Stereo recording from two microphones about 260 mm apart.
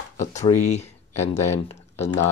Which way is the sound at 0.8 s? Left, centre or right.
Centre.